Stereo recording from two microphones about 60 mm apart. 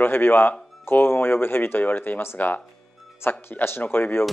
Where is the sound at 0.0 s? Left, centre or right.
Left.